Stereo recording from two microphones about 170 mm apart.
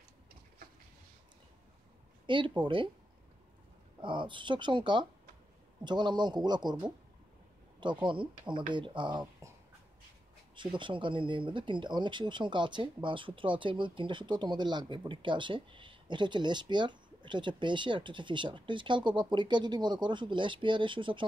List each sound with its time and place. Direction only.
2.2 s speech: 30° right (ahead or behind)
4.0 s speech: 30° right (ahead or behind)
9.4 s a sound: 15° right (ahead or behind)
10.5 s speech: 30° right (ahead or behind)